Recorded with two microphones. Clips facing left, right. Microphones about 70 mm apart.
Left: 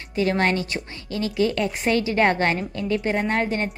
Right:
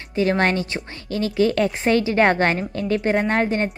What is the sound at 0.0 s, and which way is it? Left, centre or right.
A woman's voice, right.